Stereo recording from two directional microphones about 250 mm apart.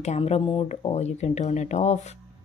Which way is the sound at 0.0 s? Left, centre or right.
Left.